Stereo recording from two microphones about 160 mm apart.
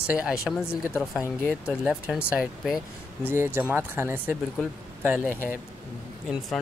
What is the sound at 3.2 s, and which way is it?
Speech, 15° right (ahead or behind).